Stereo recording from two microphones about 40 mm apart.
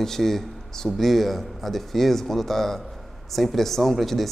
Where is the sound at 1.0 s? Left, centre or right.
Centre.